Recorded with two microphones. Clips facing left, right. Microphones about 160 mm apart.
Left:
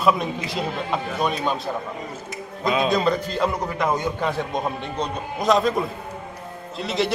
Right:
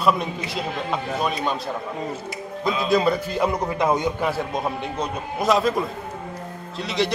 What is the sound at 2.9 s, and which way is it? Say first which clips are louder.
Speech: right 1 dB; 10° right (ahead or behind).